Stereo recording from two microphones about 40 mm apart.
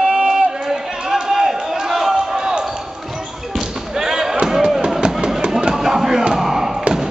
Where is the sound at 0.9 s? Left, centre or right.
Centre.